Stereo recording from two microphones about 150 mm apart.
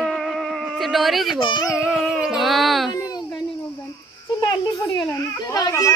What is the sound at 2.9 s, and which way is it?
Baby cry, 25° left (ahead or behind).